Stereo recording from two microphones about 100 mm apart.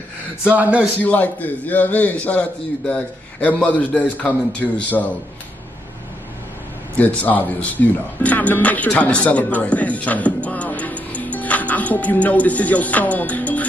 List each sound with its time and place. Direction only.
0.4 s a man's voice: 15° right (ahead or behind)
1.0 s speech: 15° left (ahead or behind)
7.0 s speech: 15° left (ahead or behind)